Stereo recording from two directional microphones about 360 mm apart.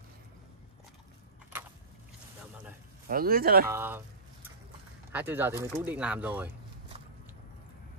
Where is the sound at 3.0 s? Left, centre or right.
Right.